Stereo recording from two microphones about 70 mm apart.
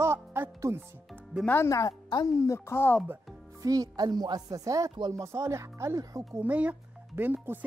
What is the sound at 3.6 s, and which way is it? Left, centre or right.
Speech, right.